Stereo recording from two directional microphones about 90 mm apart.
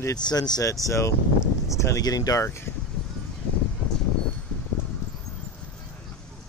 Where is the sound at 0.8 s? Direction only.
35° left (ahead or behind).